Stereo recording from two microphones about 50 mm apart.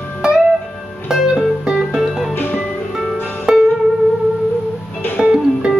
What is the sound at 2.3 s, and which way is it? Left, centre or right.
Music, left.